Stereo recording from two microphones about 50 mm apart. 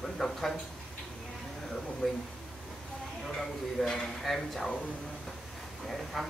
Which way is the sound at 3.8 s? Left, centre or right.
Centre.